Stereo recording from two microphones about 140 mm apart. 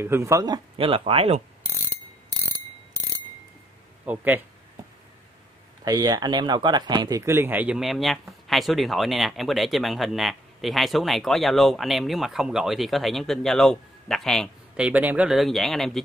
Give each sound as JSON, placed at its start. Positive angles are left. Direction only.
{"t": 0.0, "sound": "speech", "side_deg": -20}
{"t": 0.7, "sound": "speech", "side_deg": -40}
{"t": 4.0, "sound": "speech", "side_deg": -10}
{"t": 5.9, "sound": "speech", "side_deg": -25}
{"t": 14.8, "sound": "speech", "side_deg": -10}